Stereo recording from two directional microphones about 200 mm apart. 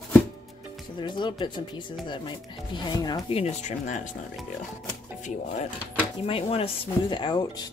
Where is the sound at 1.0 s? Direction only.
25° left (ahead or behind).